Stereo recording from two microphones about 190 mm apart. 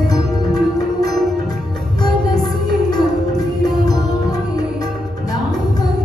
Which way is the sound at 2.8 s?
20° left (ahead or behind).